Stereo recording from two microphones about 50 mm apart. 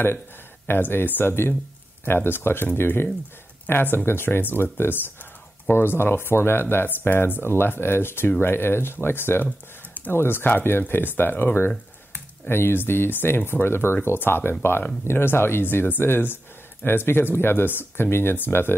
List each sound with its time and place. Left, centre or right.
0.7 s speech: left